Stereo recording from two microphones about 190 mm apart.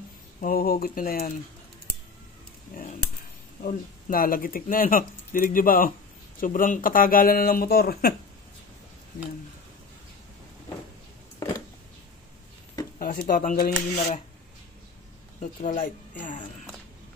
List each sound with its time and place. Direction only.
0.4 s speech: 50° left (ahead or behind)
3.6 s speech: 50° left (ahead or behind)
13.0 s speech: 45° left (ahead or behind)
15.4 s speech: 45° left (ahead or behind)